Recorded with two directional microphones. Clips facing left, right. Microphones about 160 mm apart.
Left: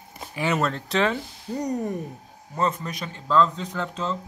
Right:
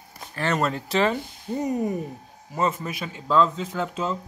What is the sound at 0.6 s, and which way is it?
Speech, 5° right (ahead or behind).